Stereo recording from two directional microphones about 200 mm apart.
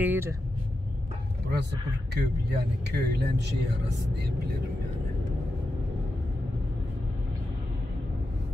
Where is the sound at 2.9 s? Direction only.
55° right (ahead or behind).